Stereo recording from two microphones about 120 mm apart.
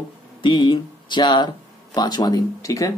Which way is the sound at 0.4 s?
40° left (ahead or behind).